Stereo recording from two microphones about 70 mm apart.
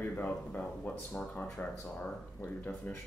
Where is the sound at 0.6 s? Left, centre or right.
Centre.